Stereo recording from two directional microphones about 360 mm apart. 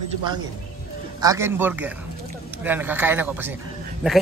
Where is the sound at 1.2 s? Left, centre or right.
Centre.